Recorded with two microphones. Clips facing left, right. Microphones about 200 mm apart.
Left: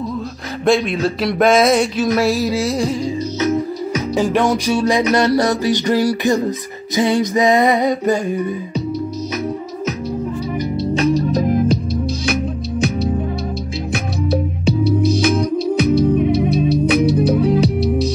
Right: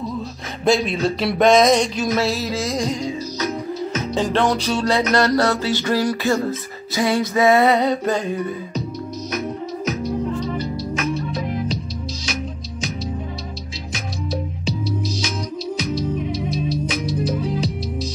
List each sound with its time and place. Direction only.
0.7 s a sound: centre (ahead or behind)
2.1 s music: 15° left (ahead or behind)
3.9 s music: 15° left (ahead or behind)
9.8 s music: 10° left (ahead or behind)
10.8 s music: 35° left (ahead or behind)
13.9 s music: 60° left (ahead or behind)